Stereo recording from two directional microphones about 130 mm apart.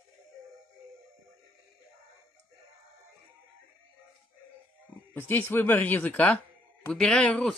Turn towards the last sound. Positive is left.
turn(degrees=5)  # may be behind; listen again after turning